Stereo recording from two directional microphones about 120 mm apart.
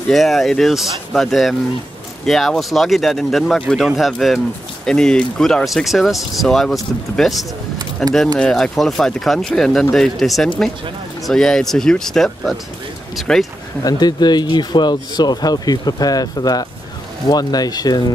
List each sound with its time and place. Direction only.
0.1 s speech: centre (ahead or behind)
13.8 s speech: 35° left (ahead or behind)